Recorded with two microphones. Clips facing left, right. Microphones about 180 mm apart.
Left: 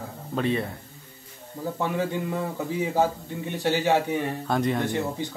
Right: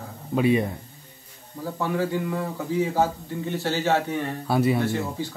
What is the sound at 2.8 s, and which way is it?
A man's voice, 15° left (ahead or behind).